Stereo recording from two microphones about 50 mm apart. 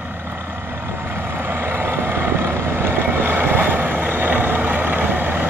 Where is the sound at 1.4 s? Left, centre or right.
Right.